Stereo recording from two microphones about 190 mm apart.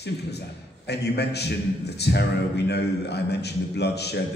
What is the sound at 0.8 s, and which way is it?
A man's voice, 60° left (ahead or behind).